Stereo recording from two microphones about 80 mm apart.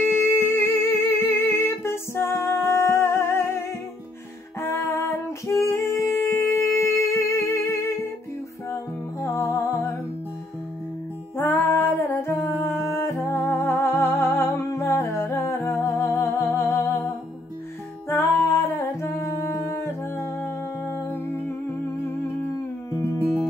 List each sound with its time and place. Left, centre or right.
0.0 s music: left
4.6 s music: left
9.2 s music: left
11.3 s humming: left
18.0 s humming: left